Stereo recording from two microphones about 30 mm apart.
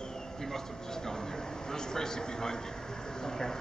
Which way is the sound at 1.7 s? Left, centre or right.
Left.